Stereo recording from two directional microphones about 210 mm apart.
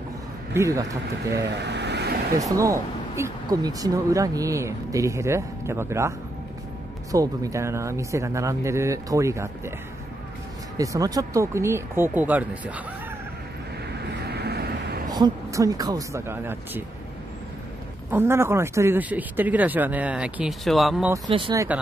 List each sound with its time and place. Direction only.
0.6 s speech: 15° right (ahead or behind)
1.3 s speech: 55° right (ahead or behind)
2.3 s speech: 15° right (ahead or behind)
10.8 s speech: 15° right (ahead or behind)
14.0 s vehicle: 50° right (ahead or behind)
15.0 s speech: 20° right (ahead or behind)
18.1 s speech: 10° right (ahead or behind)
21.3 s speech: 25° right (ahead or behind)